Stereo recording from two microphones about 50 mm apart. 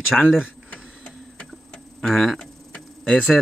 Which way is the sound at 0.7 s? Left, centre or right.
Left.